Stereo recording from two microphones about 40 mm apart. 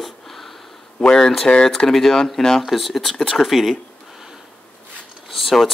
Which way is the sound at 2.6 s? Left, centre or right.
Centre.